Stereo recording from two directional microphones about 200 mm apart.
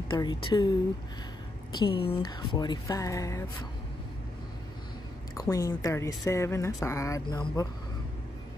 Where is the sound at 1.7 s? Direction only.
25° left (ahead or behind).